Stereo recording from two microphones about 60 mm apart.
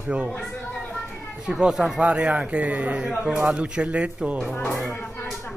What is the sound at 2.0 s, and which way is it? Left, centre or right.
A man's voice, right.